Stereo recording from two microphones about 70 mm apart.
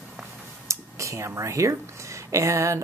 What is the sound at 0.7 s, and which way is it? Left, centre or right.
Speech, right.